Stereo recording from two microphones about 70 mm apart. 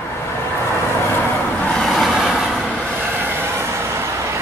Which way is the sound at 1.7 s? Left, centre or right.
Centre.